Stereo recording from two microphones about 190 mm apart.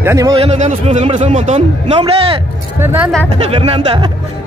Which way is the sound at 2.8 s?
10° right (ahead or behind).